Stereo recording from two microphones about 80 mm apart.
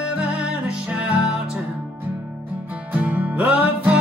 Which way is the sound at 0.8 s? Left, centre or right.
Centre.